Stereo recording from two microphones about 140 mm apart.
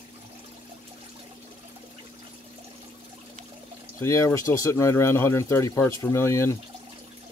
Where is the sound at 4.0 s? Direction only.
20° left (ahead or behind).